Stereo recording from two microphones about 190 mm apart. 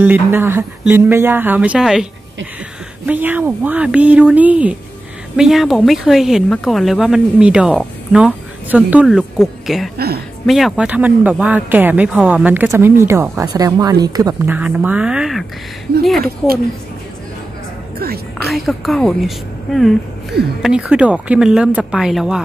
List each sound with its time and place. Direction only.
0.0 s speech: 10° right (ahead or behind)
3.1 s speech: 10° right (ahead or behind)
9.9 s a woman's voice: 55° right (ahead or behind)
10.4 s speech: centre (ahead or behind)
17.9 s music: 55° right (ahead or behind)
18.5 s speech: centre (ahead or behind)